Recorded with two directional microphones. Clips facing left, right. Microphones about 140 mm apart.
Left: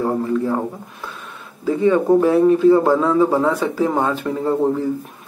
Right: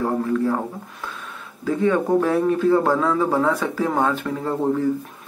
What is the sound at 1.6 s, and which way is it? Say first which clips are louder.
A man's voice: left 4 dB; 10° left (ahead or behind).